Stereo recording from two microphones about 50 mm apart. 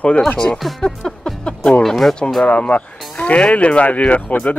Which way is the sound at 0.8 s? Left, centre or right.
Centre.